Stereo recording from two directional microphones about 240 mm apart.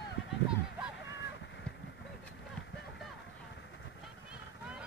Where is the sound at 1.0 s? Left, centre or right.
Left.